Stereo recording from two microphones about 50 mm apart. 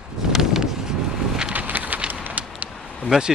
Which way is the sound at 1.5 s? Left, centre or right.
Right.